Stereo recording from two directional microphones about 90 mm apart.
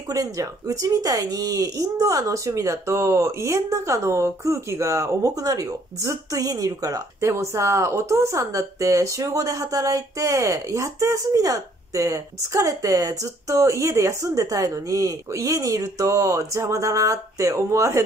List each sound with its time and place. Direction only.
0.1 s speech: 40° right (ahead or behind)